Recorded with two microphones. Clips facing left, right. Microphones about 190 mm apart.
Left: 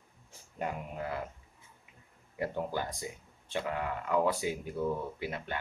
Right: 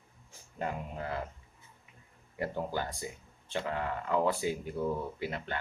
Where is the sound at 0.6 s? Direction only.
15° left (ahead or behind).